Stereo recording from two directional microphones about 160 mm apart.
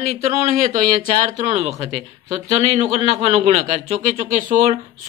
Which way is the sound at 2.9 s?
40° right (ahead or behind).